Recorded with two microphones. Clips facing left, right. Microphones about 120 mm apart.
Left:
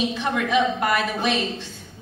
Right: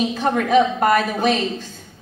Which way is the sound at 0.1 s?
40° right (ahead or behind).